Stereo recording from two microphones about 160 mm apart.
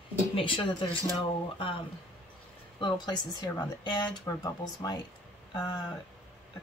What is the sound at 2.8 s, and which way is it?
Speech, 30° left (ahead or behind).